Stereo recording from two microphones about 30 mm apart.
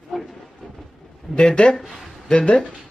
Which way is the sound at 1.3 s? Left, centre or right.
Left.